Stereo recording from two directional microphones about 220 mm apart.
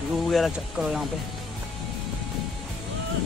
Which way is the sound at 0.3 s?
Centre (ahead or behind).